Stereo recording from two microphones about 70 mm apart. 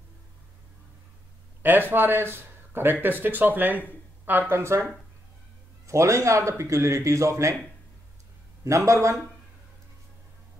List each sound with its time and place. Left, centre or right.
1.6 s speech: right
5.9 s a man's voice: right
8.6 s a man's voice: right